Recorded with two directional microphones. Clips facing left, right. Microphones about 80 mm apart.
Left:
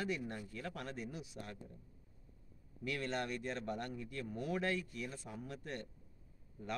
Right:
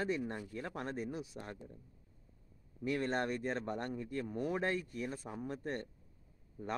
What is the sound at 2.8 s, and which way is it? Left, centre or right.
Speech, right.